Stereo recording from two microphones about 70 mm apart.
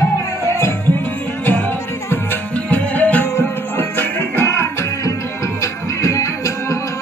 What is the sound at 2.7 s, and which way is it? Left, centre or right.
Music, left.